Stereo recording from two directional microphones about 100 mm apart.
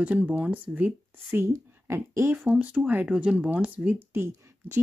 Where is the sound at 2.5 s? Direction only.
15° right (ahead or behind).